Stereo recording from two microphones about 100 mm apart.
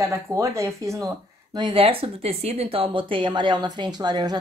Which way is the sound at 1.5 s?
60° right (ahead or behind).